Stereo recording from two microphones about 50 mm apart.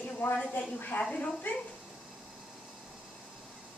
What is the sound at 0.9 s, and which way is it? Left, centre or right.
Speech, left.